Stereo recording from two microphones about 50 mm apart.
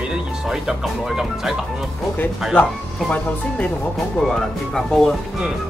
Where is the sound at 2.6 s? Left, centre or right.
Left.